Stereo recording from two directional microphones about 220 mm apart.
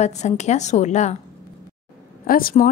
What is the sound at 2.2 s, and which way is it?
Speech, 40° left (ahead or behind).